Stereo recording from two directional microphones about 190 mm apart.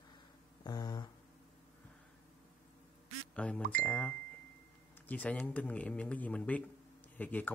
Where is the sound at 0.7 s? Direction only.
20° left (ahead or behind).